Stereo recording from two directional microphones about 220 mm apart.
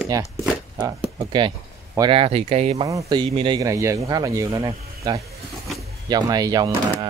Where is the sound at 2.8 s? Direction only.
15° right (ahead or behind).